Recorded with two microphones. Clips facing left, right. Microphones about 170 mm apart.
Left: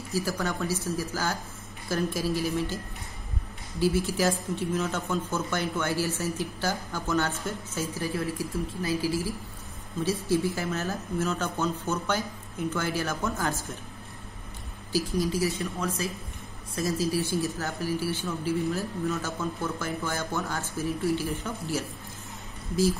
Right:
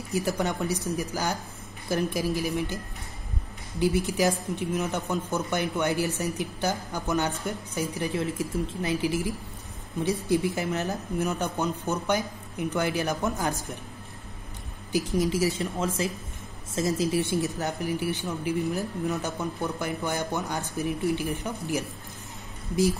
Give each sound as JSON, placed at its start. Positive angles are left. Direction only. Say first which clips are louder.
{"t": 0.1, "sound": "a man's voice", "louder": "right 2 dB", "side_deg": -20}
{"t": 3.8, "sound": "a man's voice", "louder": "right 1 dB", "side_deg": -20}
{"t": 14.9, "sound": "a man's voice", "louder": "right 2 dB", "side_deg": -20}